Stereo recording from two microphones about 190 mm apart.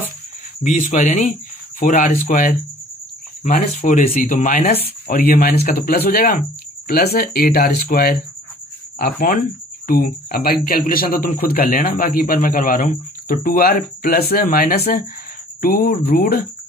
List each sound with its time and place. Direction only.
0.7 s speech: 40° left (ahead or behind)